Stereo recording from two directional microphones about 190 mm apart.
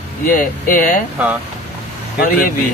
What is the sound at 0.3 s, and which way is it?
Speech, 45° left (ahead or behind).